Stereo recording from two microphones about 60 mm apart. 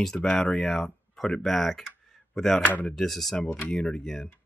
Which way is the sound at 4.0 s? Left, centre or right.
Centre.